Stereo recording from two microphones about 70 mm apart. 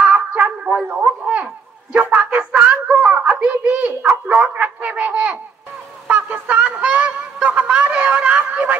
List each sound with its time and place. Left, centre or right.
0.0 s a sound: right
1.2 s speech: right
6.0 s honk: right
7.4 s speech: centre